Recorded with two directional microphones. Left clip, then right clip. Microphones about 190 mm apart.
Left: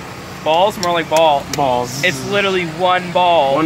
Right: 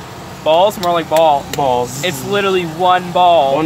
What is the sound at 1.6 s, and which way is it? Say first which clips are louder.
Speech: right 1 dB; 15° left (ahead or behind).